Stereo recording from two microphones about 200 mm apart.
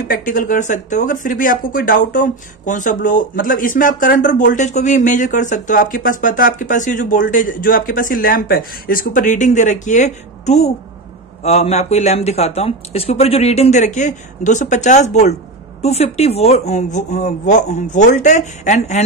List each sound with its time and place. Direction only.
0.1 s speech: 45° left (ahead or behind)